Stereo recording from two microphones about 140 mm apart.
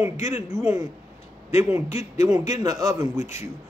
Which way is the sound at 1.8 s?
50° left (ahead or behind).